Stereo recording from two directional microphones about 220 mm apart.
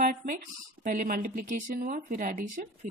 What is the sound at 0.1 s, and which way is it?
Speech, 40° right (ahead or behind).